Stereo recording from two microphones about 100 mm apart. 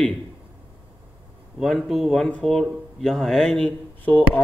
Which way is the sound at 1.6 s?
Centre (ahead or behind).